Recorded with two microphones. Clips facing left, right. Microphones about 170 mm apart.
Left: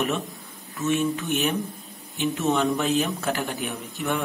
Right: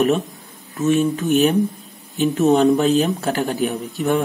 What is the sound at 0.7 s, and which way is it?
A man's voice, 40° right (ahead or behind).